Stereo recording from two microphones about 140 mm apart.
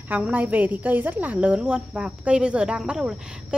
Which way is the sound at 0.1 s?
10° right (ahead or behind).